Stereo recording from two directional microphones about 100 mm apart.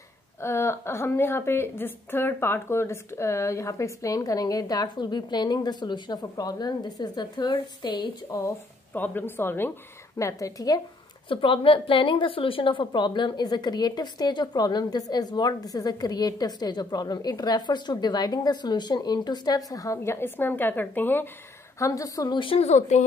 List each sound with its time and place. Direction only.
0.4 s a woman's voice: 25° left (ahead or behind); by 8.1 s 50° left (ahead or behind)
8.9 s a woman's voice: 20° left (ahead or behind)
10.1 s a woman's voice: 30° left (ahead or behind)
11.2 s a woman's voice: 60° left (ahead or behind); by 21.3 s 20° left (ahead or behind)
21.7 s a woman's voice: 30° left (ahead or behind)
22.3 s a woman's voice: 60° left (ahead or behind); by 22.9 s 90° left